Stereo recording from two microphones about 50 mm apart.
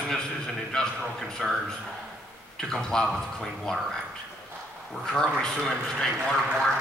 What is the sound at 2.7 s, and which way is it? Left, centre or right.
A man's voice, centre.